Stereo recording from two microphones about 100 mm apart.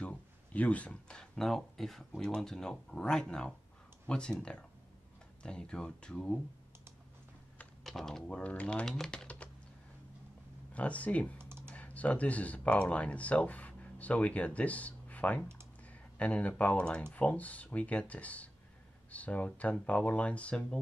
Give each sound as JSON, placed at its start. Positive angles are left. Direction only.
{"t": 0.0, "sound": "speech", "side_deg": 10}
{"t": 7.8, "sound": "speech", "side_deg": 0}
{"t": 10.7, "sound": "speech", "side_deg": 15}
{"t": 11.3, "sound": "typing", "side_deg": -25}
{"t": 11.7, "sound": "speech", "side_deg": 15}